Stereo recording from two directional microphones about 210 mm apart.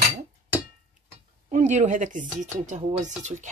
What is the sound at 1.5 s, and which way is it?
Speech, 35° right (ahead or behind).